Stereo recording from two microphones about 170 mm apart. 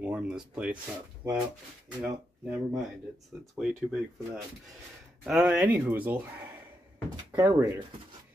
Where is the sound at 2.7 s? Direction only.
20° right (ahead or behind).